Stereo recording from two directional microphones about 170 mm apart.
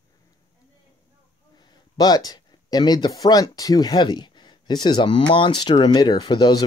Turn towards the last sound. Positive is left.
turn(degrees=25)  # may be behind; listen again after turning